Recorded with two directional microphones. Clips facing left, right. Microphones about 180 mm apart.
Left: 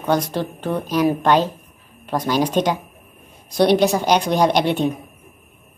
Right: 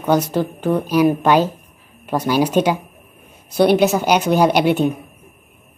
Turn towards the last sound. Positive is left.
turn(degrees=-5)  # may be behind; listen again after turning